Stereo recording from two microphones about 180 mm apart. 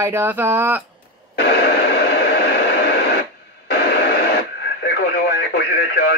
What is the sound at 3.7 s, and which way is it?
Radio, 65° left (ahead or behind).